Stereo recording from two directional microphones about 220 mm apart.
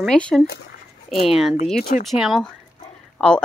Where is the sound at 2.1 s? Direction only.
Centre (ahead or behind).